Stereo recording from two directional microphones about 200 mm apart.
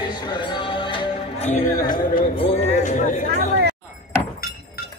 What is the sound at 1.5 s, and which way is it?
Speech, 45° left (ahead or behind).